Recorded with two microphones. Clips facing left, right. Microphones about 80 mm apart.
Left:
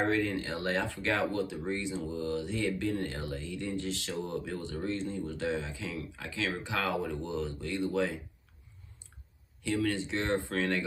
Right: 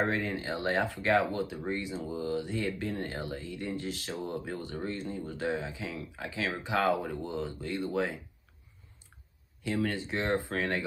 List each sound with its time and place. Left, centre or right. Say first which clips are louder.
0.0 s speech: left 1 dB; right
9.7 s speech: left 1 dB; right